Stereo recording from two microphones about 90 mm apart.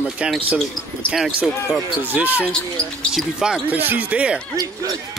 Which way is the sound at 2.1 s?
20° right (ahead or behind).